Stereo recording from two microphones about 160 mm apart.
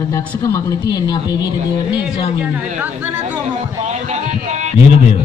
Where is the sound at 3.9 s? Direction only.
45° right (ahead or behind).